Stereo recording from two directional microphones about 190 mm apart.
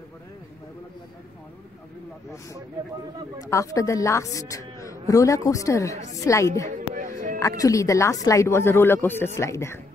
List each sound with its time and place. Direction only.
3.4 s a woman's voice: 15° left (ahead or behind)
7.0 s a sound: 45° right (ahead or behind)
7.3 s a woman's voice: 15° left (ahead or behind)